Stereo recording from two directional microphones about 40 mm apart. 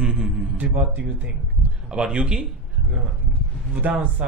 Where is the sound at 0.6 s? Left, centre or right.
Right.